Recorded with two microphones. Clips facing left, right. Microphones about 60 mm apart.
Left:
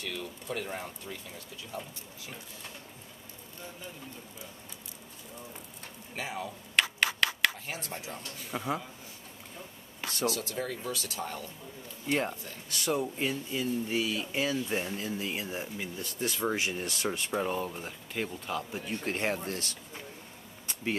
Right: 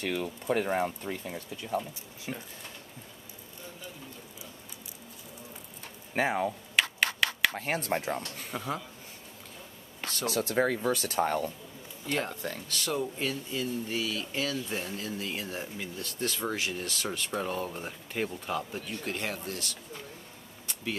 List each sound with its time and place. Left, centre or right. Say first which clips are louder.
0.0 s speech: right 7 dB; right
6.1 s speech: right 9 dB; right
6.7 s a sound: left 3 dB; centre
7.5 s speech: right 8 dB; right
8.5 s speech: left 3 dB; centre
10.0 s a sound: even; centre
10.5 s speech: right 8 dB; right
12.1 s speech: left 1 dB; centre
17.3 s speech: left 1 dB; centre
17.6 s speech: right 1 dB; centre
18.8 s speech: left 2 dB; left